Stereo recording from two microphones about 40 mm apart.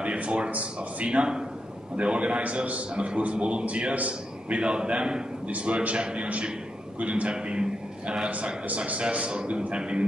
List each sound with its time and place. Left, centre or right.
0.0 s a man's voice: right
5.5 s a man's voice: right
8.6 s a man's voice: right